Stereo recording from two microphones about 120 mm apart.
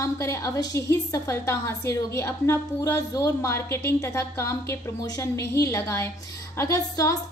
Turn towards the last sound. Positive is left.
turn(degrees=30)  # may be behind; listen again after turning